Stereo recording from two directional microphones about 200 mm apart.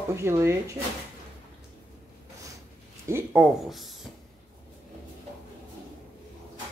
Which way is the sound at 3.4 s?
Centre (ahead or behind).